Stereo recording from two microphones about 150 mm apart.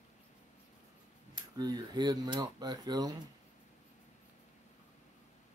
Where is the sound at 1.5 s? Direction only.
25° right (ahead or behind).